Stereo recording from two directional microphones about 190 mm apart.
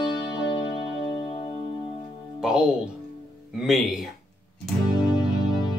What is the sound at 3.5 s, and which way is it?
Speech, centre (ahead or behind).